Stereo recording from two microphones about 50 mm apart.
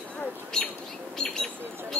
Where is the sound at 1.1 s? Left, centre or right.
Centre.